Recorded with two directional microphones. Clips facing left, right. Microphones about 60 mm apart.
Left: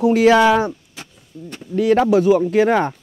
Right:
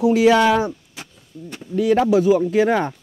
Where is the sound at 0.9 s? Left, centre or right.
Centre.